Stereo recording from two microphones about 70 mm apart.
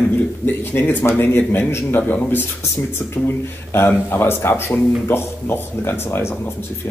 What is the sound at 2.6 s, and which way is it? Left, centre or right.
Speech, left.